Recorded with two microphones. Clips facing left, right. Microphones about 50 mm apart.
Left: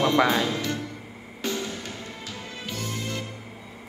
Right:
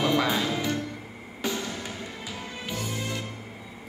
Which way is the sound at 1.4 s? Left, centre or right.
Centre.